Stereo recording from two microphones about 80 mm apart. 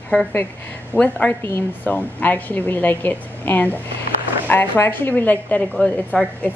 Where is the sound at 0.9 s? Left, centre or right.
Centre.